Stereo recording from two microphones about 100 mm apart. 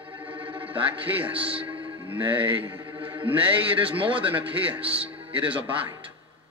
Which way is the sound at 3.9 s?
60° right (ahead or behind).